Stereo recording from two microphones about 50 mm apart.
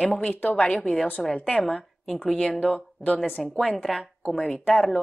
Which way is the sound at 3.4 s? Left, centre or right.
Centre.